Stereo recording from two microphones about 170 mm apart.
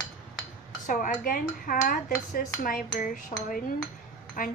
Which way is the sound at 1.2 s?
55° left (ahead or behind).